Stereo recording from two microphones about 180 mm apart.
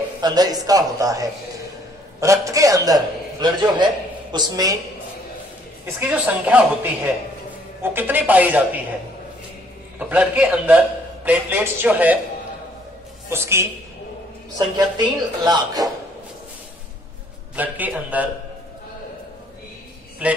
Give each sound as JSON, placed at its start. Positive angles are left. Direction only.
{"t": 0.2, "sound": "a man's voice", "side_deg": -20}
{"t": 5.9, "sound": "a man's voice", "side_deg": -10}
{"t": 9.9, "sound": "a man's voice", "side_deg": -10}
{"t": 13.3, "sound": "a man's voice", "side_deg": -15}
{"t": 17.6, "sound": "a man's voice", "side_deg": -10}
{"t": 20.2, "sound": "a man's voice", "side_deg": -5}